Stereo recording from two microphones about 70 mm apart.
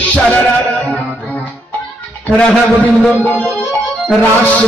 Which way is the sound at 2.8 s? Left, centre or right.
Left.